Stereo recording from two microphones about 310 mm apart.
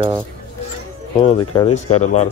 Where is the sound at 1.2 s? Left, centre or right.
Centre.